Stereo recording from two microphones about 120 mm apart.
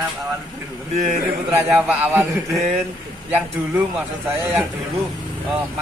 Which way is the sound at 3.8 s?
15° right (ahead or behind).